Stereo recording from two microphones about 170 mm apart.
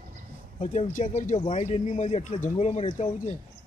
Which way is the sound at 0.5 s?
40° left (ahead or behind).